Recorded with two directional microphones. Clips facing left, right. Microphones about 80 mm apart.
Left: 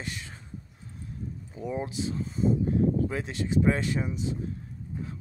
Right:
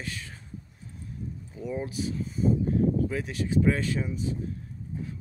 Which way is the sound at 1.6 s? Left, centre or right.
Left.